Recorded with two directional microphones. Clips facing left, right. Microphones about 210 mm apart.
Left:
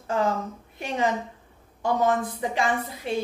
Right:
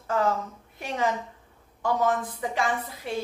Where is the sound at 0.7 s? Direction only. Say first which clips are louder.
Left 2 dB; 25° left (ahead or behind).